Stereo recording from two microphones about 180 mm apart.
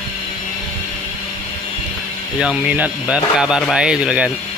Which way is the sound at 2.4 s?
5° right (ahead or behind).